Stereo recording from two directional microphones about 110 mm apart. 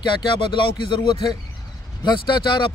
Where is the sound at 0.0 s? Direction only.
45° left (ahead or behind).